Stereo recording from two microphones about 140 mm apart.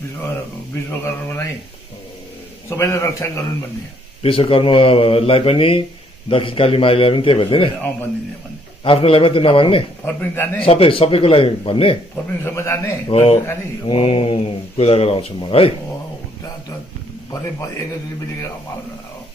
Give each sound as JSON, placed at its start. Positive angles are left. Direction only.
{"t": 0.8, "sound": "a man's voice", "side_deg": 15}
{"t": 2.7, "sound": "a man's voice", "side_deg": 20}
{"t": 4.2, "sound": "speech", "side_deg": 40}
{"t": 8.8, "sound": "speech", "side_deg": 40}
{"t": 10.0, "sound": "a man's voice", "side_deg": 15}
{"t": 10.6, "sound": "speech", "side_deg": 40}
{"t": 12.4, "sound": "a man's voice", "side_deg": 20}
{"t": 13.1, "sound": "speech", "side_deg": 50}